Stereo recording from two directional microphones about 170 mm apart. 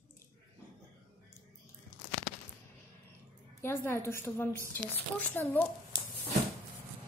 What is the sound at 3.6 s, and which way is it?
Speech, 15° left (ahead or behind).